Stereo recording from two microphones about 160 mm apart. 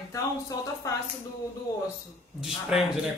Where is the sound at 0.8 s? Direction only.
20° left (ahead or behind).